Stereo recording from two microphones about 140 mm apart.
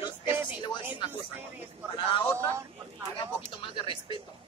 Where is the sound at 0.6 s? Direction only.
35° left (ahead or behind).